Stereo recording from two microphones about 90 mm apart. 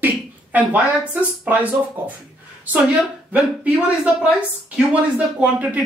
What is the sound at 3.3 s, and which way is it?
A woman's voice, 15° right (ahead or behind).